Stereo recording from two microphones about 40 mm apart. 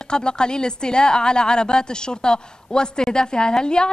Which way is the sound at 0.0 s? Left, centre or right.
Left.